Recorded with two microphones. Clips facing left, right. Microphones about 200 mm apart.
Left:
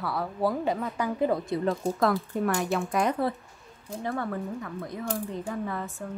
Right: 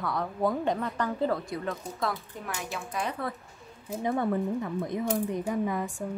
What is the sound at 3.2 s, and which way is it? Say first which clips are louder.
Speech: left 6 dB; 30° left (ahead or behind).